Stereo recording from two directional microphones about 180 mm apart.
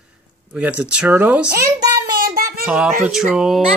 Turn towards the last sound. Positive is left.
turn(degrees=0)  # may be behind; listen again after turning